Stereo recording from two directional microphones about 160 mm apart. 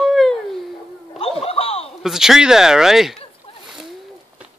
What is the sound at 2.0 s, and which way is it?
Speech, 5° right (ahead or behind).